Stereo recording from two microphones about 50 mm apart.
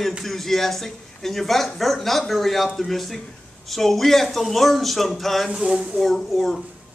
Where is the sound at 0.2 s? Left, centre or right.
Centre.